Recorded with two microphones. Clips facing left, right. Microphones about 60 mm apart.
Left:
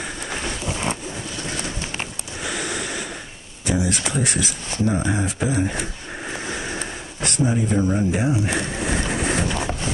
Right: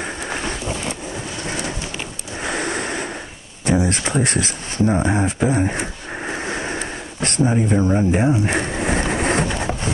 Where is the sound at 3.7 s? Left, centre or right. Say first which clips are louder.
Right 4 dB; right.